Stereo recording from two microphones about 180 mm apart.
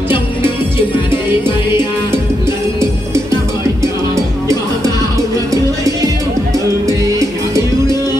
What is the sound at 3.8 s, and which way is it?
Music, 15° right (ahead or behind).